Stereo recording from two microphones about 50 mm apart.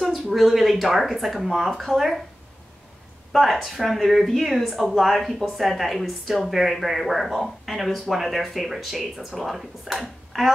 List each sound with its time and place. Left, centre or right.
0.0 s speech: centre
3.3 s speech: centre